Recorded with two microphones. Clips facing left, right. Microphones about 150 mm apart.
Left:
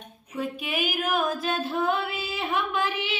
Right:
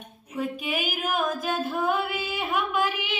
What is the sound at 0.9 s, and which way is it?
Music, 5° right (ahead or behind).